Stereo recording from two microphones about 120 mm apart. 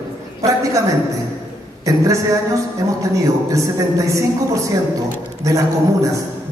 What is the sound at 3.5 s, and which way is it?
A man's voice, 25° right (ahead or behind).